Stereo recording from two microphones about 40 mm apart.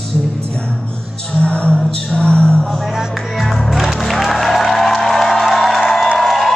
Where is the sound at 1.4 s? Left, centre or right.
Left.